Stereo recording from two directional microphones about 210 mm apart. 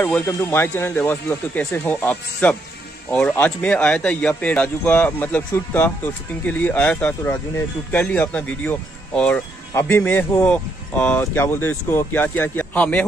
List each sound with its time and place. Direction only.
0.0 s speech: 10° left (ahead or behind)